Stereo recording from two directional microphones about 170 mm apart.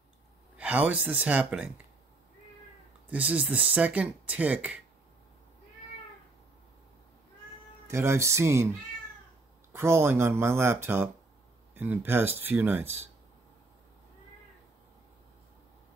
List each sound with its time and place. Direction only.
0.6 s speech: 10° right (ahead or behind)
3.1 s speech: 10° right (ahead or behind)
7.9 s speech: 15° right (ahead or behind)
9.7 s speech: 15° right (ahead or behind)